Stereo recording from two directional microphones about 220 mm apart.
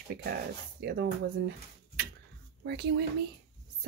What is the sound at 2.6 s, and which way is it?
Speech, 50° right (ahead or behind).